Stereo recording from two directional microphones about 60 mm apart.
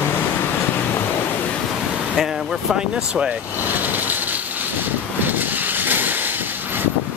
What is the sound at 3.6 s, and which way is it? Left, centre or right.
Vehicle, right.